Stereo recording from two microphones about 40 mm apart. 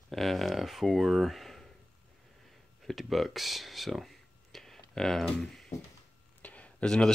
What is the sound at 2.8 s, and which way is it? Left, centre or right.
Speech, centre.